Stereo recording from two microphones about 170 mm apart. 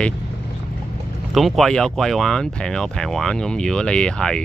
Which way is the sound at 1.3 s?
Centre (ahead or behind).